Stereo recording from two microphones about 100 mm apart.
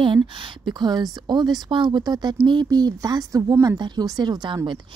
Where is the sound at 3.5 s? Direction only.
30° right (ahead or behind).